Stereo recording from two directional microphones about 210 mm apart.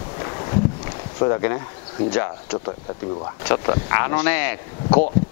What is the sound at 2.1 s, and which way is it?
Speech, 15° left (ahead or behind).